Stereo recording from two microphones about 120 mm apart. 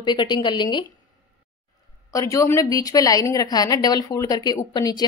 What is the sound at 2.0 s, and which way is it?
Speech, 25° left (ahead or behind).